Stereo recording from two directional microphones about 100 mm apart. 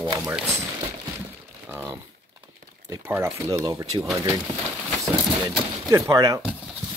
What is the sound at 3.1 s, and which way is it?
Speech, 25° right (ahead or behind).